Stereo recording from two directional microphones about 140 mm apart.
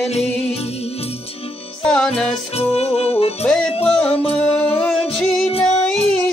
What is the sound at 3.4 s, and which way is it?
Music, 5° left (ahead or behind).